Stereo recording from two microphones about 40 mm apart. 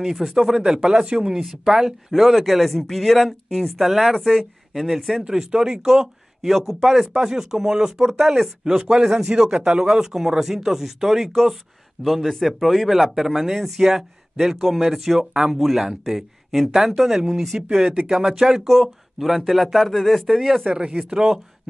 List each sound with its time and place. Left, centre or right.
0.0 s speech: centre
2.1 s speech: centre
5.2 s a man's voice: centre
20.2 s speech: centre
20.7 s a man's voice: right
21.1 s speech: centre